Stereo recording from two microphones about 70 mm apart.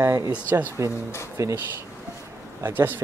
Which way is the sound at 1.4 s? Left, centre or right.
Right.